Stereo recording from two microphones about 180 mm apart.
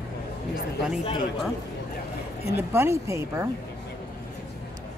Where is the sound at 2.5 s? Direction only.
10° right (ahead or behind).